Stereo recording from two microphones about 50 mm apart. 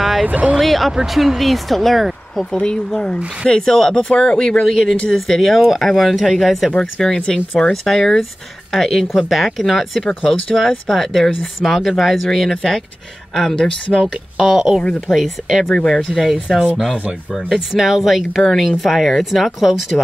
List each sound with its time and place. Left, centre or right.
0.3 s speech: right
0.6 s speech: centre
2.5 s speech: centre
4.6 s speech: centre
6.8 s speech: centre
7.8 s speech: centre
14.4 s speech: centre
15.7 s speech: centre
16.1 s speech: centre
16.7 s speech: centre